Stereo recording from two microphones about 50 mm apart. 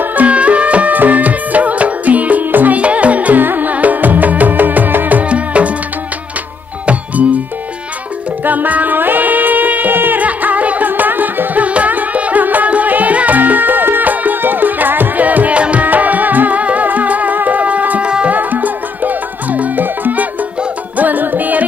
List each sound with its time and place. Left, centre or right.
0.0 s music: right
5.2 s music: right
8.5 s music: right